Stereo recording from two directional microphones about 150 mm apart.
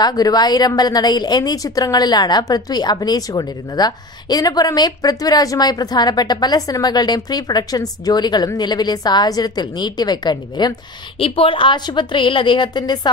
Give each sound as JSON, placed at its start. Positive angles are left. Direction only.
{"t": 0.0, "sound": "a woman's voice", "side_deg": 25}